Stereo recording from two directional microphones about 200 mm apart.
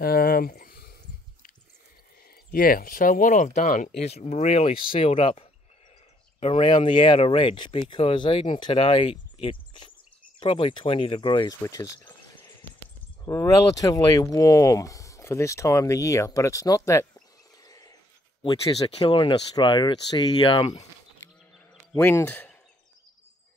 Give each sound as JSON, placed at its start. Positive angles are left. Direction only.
{"t": 0.0, "sound": "a sound", "side_deg": 45}
{"t": 2.5, "sound": "speech", "side_deg": 45}
{"t": 13.2, "sound": "speech", "side_deg": 15}
{"t": 17.6, "sound": "a sound", "side_deg": 20}
{"t": 18.4, "sound": "speech", "side_deg": 30}
{"t": 21.9, "sound": "speech", "side_deg": 10}